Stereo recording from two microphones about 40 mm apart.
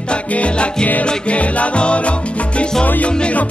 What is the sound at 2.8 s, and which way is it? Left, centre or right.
Music, left.